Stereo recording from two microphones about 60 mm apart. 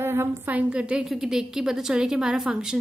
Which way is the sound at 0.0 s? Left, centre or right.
Right.